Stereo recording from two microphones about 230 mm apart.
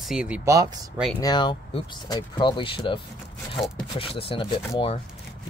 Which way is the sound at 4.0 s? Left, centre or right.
Left.